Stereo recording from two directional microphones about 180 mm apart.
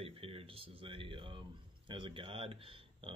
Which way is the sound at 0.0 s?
30° right (ahead or behind).